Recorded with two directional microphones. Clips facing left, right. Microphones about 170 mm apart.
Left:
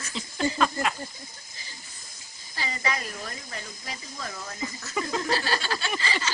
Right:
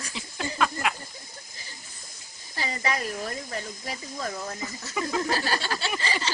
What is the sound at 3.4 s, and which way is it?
Speech, 40° right (ahead or behind).